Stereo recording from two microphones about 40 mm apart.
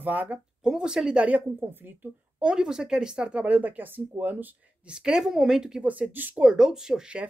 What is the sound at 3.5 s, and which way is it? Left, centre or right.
Speech, right.